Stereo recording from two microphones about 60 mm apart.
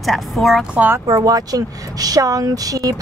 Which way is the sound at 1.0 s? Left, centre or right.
Right.